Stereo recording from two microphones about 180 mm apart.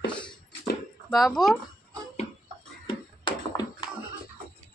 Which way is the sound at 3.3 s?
25° left (ahead or behind).